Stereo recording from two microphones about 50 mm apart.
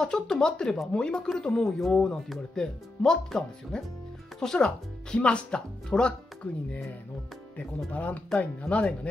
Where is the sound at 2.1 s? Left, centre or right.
Centre.